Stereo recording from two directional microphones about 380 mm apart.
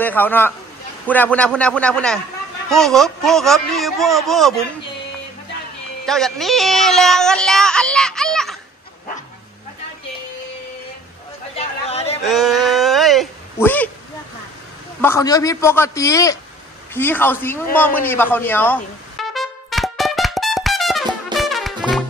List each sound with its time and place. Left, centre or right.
0.0 s speech: centre
6.0 s speech: centre
11.5 s chatter: centre
12.3 s speech: centre
15.0 s a man's voice: centre
17.7 s brass instrument: centre